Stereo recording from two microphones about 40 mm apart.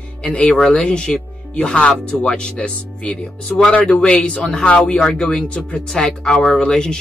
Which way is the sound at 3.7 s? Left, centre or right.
Left.